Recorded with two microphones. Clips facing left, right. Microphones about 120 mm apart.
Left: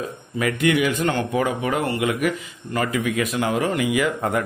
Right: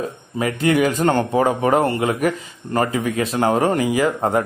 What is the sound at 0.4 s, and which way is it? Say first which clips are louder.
Speech: right 2 dB; 30° right (ahead or behind).